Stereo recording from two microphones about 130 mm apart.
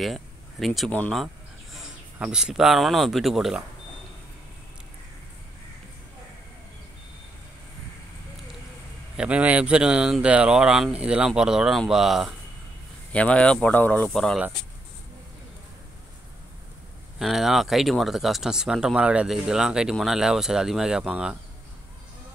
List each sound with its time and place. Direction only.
0.0 s speech: centre (ahead or behind)
9.1 s speech: 10° right (ahead or behind)
13.1 s speech: 10° left (ahead or behind)
17.2 s speech: centre (ahead or behind)